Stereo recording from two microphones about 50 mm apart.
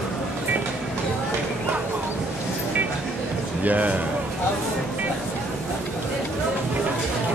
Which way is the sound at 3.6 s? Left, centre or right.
Right.